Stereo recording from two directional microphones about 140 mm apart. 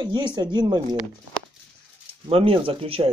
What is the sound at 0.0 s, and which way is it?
Speech, 35° right (ahead or behind).